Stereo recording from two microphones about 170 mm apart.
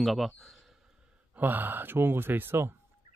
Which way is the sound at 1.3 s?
10° right (ahead or behind).